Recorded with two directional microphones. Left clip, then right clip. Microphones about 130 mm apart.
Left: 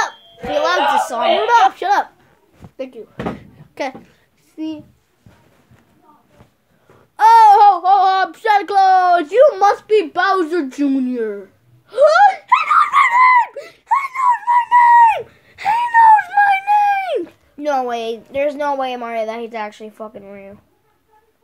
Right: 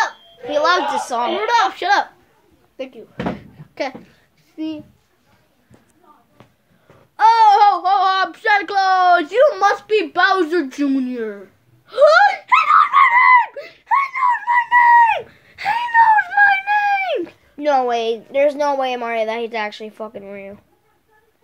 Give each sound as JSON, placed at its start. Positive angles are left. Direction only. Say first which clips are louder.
{"t": 0.4, "sound": "a sound", "louder": "left 1 dB", "side_deg": 90}
{"t": 1.5, "sound": "a child's voice", "louder": "left 1 dB", "side_deg": 45}
{"t": 7.2, "sound": "a child's voice", "louder": "left 3 dB", "side_deg": 45}
{"t": 11.9, "sound": "screaming", "louder": "left 1 dB", "side_deg": 50}
{"t": 17.2, "sound": "a woman's voice", "louder": "right 2 dB", "side_deg": -15}